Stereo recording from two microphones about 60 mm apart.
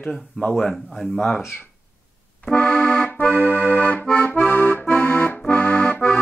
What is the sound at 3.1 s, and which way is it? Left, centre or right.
Accordion, left.